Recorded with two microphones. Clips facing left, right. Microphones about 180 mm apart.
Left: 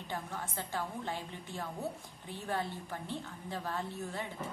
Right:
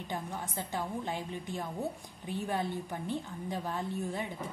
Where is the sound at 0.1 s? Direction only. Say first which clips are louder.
Right 2 dB; 15° right (ahead or behind).